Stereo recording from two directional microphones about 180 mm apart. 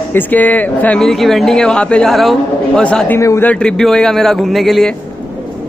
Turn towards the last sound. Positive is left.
turn(degrees=0)  # may be behind; listen again after turning